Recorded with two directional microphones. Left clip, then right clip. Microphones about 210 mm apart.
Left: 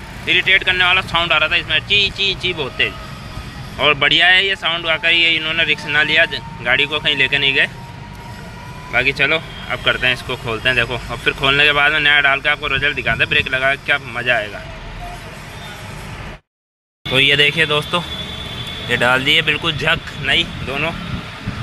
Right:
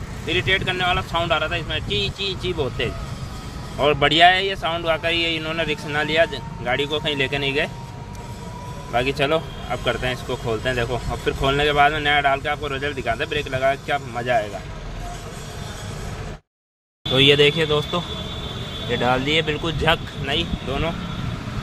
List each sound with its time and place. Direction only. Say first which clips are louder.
0.3 s speech: left 8 dB; 10° right (ahead or behind)
8.9 s speech: left 5 dB; 20° right (ahead or behind)
9.7 s speech: left 8 dB; 5° right (ahead or behind)
17.1 s speech: left 2 dB; 10° right (ahead or behind)